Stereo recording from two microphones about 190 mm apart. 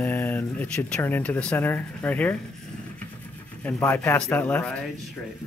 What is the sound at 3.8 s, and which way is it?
Speech, 10° left (ahead or behind).